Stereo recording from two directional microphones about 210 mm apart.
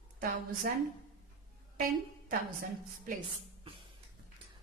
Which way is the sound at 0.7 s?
45° right (ahead or behind).